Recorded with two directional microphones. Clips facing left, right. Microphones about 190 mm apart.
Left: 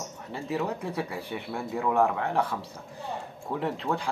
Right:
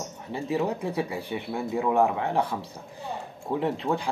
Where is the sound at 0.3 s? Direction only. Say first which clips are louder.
Right 3 dB; 20° right (ahead or behind).